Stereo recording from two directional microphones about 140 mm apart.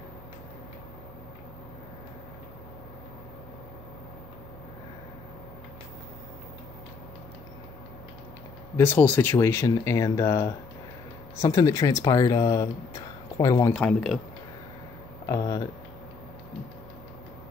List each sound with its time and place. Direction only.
8.7 s speech: 15° left (ahead or behind)
13.7 s speech: 5° left (ahead or behind)
15.2 s speech: 25° left (ahead or behind)